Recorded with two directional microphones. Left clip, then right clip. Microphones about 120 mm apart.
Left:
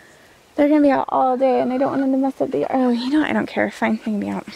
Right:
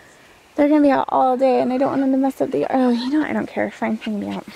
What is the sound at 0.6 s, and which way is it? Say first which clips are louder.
A woman's voice: even; centre (ahead or behind).